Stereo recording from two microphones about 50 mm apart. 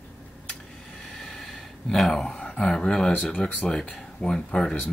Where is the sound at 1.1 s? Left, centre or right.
Centre.